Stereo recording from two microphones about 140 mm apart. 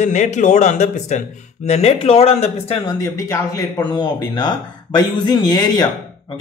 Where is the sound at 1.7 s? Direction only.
50° left (ahead or behind).